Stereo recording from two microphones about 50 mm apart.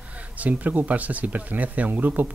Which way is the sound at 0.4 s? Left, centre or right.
Right.